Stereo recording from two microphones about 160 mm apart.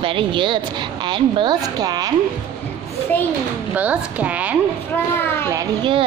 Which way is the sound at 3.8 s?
10° right (ahead or behind).